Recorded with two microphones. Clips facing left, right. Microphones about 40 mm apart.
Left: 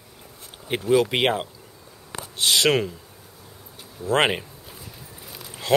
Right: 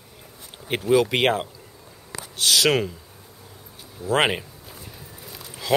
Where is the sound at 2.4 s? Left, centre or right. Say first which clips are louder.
Even; left.